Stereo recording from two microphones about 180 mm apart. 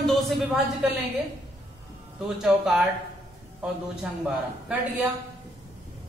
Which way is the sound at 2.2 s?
5° right (ahead or behind).